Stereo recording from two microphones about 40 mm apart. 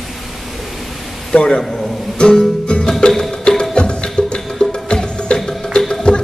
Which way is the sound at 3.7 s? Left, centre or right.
Left.